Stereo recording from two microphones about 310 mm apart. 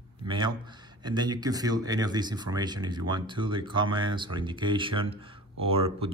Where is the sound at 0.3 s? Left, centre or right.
Centre.